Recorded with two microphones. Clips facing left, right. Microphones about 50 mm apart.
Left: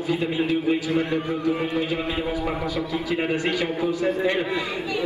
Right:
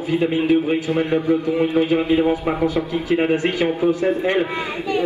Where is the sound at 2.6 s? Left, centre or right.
Right.